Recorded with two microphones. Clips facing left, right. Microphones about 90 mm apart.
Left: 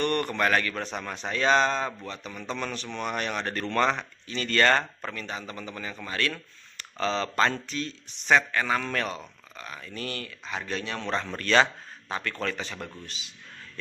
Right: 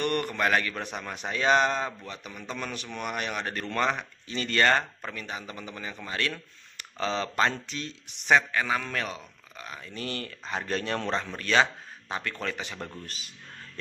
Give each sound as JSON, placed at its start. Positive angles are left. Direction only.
{"t": 0.0, "sound": "a man's voice", "side_deg": -10}
{"t": 4.3, "sound": "a man's voice", "side_deg": -20}
{"t": 8.3, "sound": "a man's voice", "side_deg": -10}
{"t": 9.6, "sound": "speech", "side_deg": -20}
{"t": 10.2, "sound": "speech", "side_deg": -35}
{"t": 11.2, "sound": "a man's voice", "side_deg": -10}
{"t": 13.0, "sound": "speech", "side_deg": -45}